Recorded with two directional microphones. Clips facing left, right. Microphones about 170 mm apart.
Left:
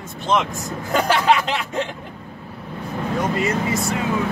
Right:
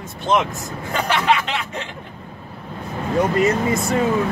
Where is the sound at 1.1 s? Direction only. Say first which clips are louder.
Left 1 dB; 35° left (ahead or behind).